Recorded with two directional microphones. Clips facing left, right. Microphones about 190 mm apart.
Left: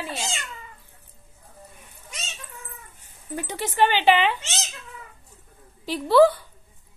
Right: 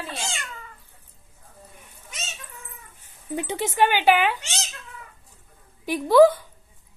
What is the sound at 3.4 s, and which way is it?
Speech, 15° right (ahead or behind).